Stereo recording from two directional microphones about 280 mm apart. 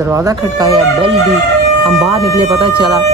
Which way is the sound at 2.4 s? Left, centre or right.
Centre.